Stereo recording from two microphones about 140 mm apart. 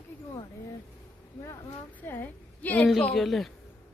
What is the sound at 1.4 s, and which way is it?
A woman's voice, 15° left (ahead or behind).